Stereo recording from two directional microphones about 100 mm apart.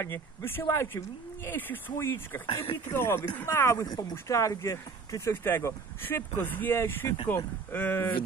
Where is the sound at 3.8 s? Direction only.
45° left (ahead or behind).